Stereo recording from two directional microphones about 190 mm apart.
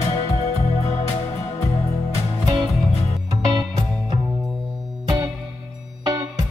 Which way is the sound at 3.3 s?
20° right (ahead or behind).